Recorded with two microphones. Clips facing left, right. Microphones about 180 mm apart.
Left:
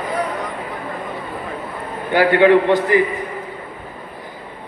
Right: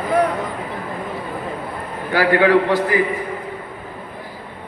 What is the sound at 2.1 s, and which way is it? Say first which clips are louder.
Speech: left 2 dB; 20° left (ahead or behind).